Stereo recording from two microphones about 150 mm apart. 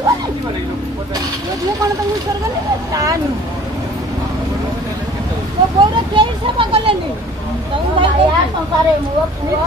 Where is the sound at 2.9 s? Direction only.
25° right (ahead or behind).